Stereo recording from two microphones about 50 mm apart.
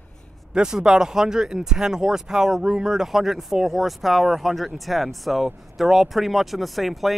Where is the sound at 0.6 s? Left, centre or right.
Centre.